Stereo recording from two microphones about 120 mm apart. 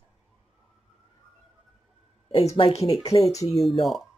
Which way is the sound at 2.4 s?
55° left (ahead or behind).